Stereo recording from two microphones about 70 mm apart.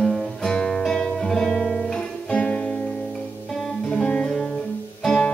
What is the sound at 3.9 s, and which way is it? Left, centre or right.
Music, centre.